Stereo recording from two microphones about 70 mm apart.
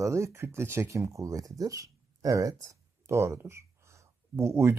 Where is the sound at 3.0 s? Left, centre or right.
Right.